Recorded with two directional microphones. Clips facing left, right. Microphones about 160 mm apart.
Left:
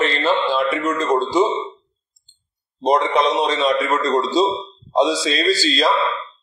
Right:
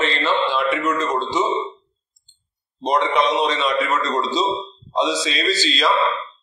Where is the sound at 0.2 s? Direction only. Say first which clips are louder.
Left 2 dB; 40° left (ahead or behind).